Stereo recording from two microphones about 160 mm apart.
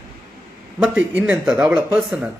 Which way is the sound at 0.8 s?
10° right (ahead or behind).